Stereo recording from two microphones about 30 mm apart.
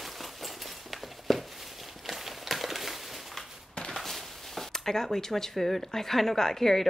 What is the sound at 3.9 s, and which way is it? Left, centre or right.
A woman's voice, centre.